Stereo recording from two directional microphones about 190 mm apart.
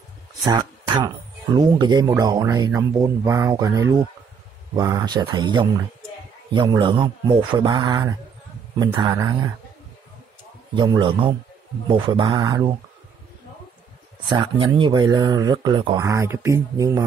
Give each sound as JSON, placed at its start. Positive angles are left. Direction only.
{"t": 0.5, "sound": "speech", "side_deg": -25}
{"t": 10.7, "sound": "speech", "side_deg": -25}
{"t": 14.3, "sound": "speech", "side_deg": -25}